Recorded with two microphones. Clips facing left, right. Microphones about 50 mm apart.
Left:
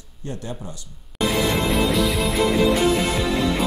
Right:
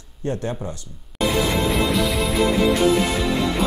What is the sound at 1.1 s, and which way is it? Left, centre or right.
Music, centre.